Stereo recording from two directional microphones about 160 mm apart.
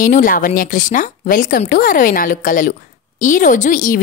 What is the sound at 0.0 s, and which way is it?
A woman's voice, 60° left (ahead or behind).